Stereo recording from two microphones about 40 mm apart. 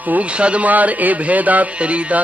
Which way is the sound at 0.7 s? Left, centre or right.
Right.